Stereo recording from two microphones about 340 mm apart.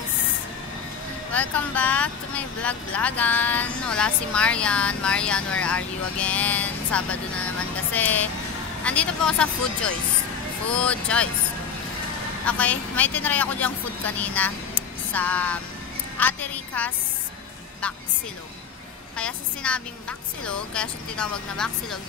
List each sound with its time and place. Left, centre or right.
1.3 s speech: centre
12.4 s a woman's voice: centre
19.1 s speech: centre